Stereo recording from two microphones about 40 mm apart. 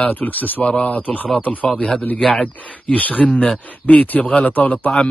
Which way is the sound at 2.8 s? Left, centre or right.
Left.